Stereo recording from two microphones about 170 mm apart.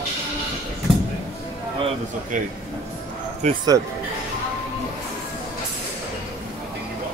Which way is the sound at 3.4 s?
40° right (ahead or behind).